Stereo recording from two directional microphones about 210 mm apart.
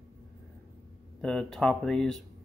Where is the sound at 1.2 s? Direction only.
5° left (ahead or behind).